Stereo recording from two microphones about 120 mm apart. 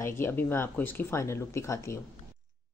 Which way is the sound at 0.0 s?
20° left (ahead or behind).